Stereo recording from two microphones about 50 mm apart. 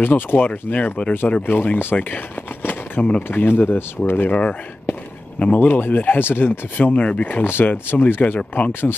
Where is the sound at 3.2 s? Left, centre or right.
Left.